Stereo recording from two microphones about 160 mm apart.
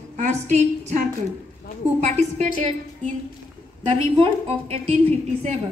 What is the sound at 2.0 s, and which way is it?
Speech, 45° right (ahead or behind).